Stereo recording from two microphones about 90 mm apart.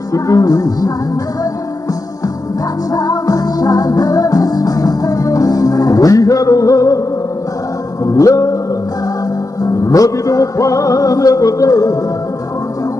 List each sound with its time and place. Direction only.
0.1 s music: 40° left (ahead or behind)
2.9 s music: 45° left (ahead or behind)
8.0 s music: 40° left (ahead or behind)
9.6 s music: 40° left (ahead or behind)